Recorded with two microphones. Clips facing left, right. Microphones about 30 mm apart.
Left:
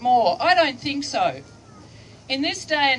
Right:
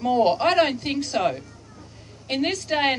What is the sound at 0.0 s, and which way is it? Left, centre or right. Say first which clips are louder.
A woman's voice: left 2 dB; centre.